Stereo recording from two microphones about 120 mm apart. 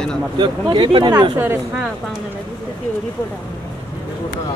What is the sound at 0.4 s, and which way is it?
Speech, 40° right (ahead or behind).